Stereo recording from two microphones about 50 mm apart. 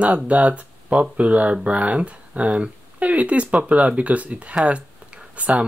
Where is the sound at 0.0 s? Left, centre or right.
Right.